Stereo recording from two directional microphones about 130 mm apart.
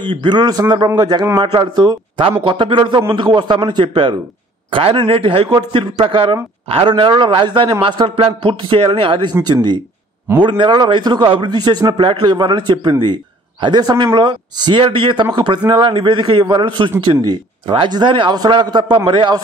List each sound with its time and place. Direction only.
0.0 s a man's voice: 35° right (ahead or behind)